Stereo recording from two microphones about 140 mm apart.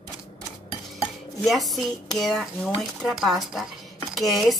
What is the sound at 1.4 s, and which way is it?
Speech, centre (ahead or behind).